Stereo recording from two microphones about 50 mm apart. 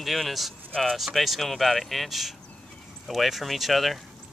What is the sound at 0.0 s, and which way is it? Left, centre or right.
Speech, centre.